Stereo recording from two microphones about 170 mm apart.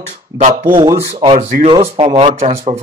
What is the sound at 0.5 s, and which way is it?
Speech, 25° right (ahead or behind).